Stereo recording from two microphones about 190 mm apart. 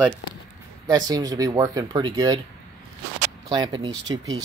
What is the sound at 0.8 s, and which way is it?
Speech, 20° right (ahead or behind).